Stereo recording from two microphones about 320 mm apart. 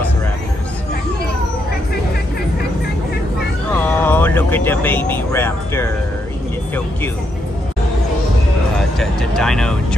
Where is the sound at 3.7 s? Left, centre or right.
Centre.